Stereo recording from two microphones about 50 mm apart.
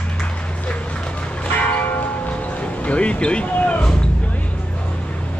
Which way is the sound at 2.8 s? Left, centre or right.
Left.